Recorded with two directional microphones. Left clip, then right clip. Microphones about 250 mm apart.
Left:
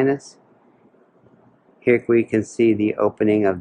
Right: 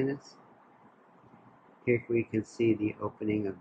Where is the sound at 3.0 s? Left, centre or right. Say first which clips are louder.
Left 15 dB; centre.